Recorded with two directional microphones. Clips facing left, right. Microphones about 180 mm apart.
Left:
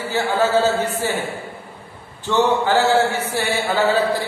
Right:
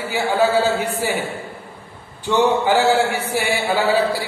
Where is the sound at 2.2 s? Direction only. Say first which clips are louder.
Right 1 dB; 15° right (ahead or behind).